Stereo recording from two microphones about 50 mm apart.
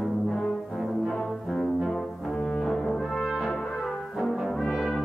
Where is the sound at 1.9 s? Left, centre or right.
Centre.